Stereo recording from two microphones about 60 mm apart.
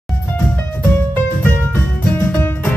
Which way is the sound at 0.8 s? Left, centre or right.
Left.